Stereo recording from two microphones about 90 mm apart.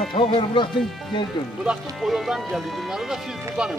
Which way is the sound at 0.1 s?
65° left (ahead or behind).